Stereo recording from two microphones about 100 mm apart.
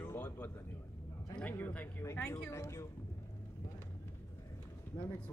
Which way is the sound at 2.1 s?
25° left (ahead or behind).